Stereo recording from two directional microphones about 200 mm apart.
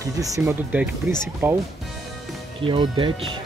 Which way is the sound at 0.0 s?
15° right (ahead or behind).